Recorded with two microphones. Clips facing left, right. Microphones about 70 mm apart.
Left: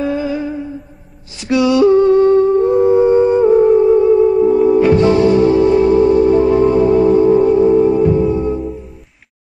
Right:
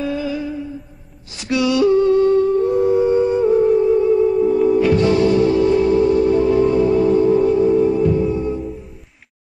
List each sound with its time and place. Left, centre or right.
0.0 s music: left
1.4 s a sound: left
4.6 s music: left